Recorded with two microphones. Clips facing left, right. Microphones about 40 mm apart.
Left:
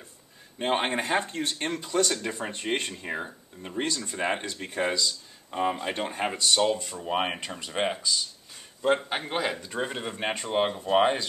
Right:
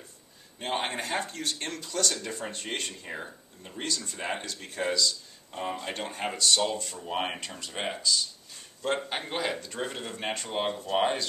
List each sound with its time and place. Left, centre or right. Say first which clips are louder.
0.6 s speech: left 5 dB; left